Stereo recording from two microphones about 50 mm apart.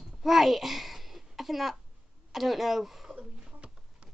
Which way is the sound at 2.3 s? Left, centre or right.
Centre.